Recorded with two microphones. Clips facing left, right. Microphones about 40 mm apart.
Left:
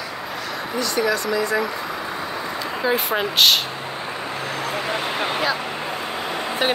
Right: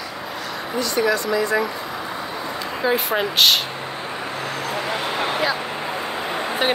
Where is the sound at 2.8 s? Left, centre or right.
Centre.